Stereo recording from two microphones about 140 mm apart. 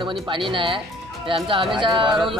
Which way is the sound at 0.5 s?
40° right (ahead or behind).